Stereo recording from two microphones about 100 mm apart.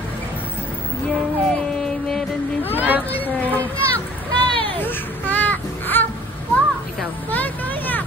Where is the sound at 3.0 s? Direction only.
15° left (ahead or behind).